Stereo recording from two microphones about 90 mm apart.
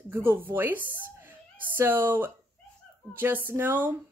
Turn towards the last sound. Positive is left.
turn(degrees=-25)  # may be behind; listen again after turning